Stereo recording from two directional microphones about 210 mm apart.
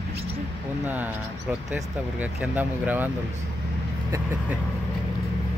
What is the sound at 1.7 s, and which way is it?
Speech, 10° right (ahead or behind).